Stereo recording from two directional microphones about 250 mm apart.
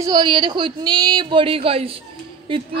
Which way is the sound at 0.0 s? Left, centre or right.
Centre.